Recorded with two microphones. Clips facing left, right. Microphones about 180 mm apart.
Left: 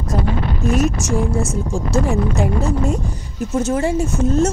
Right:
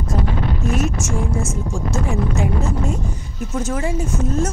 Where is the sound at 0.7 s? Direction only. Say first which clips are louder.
Left 4 dB; 40° left (ahead or behind).